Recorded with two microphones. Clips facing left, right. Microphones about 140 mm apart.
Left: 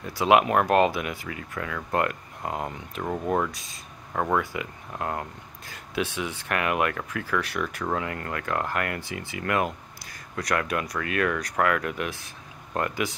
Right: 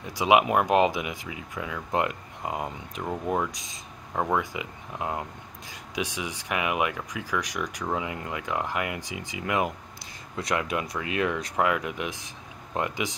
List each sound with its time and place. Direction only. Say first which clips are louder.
0.0 s speech: left 1 dB; 15° right (ahead or behind)
3.0 s speech: left 2 dB; 5° right (ahead or behind)
3.5 s speech: right 1 dB; 20° right (ahead or behind)
4.2 s speech: left 1 dB; 10° right (ahead or behind)